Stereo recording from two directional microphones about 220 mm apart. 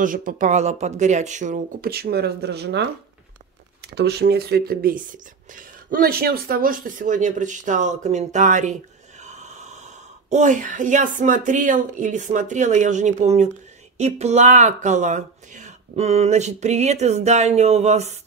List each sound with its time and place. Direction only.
0.0 s speech: 40° right (ahead or behind)